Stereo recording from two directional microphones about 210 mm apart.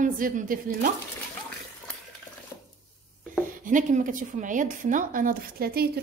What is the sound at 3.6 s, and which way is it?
Speech, 40° right (ahead or behind).